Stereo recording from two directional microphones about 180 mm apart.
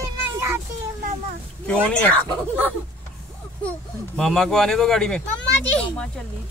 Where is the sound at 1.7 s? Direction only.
5° left (ahead or behind).